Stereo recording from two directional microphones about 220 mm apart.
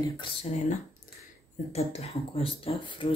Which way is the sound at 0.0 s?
25° left (ahead or behind).